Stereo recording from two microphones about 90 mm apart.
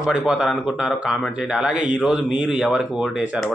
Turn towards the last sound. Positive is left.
turn(degrees=-5)  # may be behind; listen again after turning